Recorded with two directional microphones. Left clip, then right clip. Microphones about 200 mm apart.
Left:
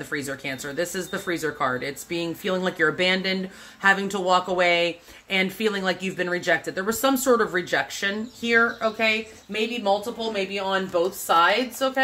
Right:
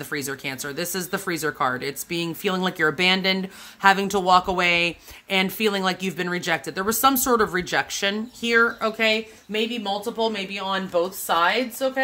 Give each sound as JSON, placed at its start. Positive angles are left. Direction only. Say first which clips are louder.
{"t": 0.1, "sound": "speech", "louder": "right 1 dB", "side_deg": -45}